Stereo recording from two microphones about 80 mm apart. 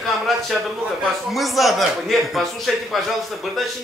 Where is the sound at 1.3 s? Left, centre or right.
Centre.